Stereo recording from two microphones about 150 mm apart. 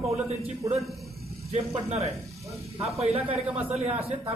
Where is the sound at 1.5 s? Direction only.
45° right (ahead or behind).